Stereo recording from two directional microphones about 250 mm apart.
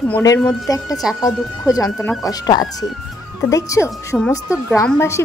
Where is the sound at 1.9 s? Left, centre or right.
Centre.